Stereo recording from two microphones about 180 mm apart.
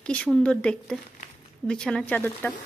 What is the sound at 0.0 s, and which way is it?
Speech, 5° left (ahead or behind).